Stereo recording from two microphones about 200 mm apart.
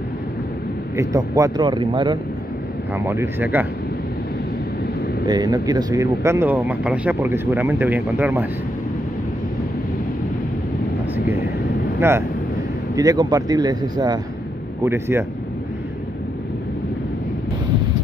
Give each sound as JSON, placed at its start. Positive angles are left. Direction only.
{"t": 0.9, "sound": "speech", "side_deg": -15}
{"t": 2.9, "sound": "speech", "side_deg": -10}
{"t": 5.2, "sound": "speech", "side_deg": -20}
{"t": 12.0, "sound": "speech", "side_deg": -10}